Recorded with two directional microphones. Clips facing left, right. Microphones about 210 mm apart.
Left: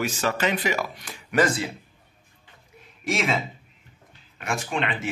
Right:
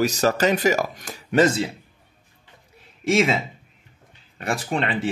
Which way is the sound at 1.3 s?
25° right (ahead or behind).